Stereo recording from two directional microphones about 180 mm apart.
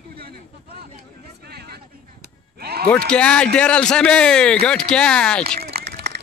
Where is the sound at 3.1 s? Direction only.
5° left (ahead or behind).